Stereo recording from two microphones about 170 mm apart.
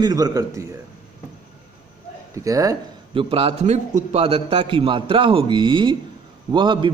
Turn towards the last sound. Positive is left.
turn(degrees=-30)  # may be behind; listen again after turning